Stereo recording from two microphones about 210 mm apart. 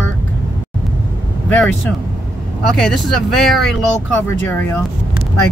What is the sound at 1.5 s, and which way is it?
Speech, 10° left (ahead or behind).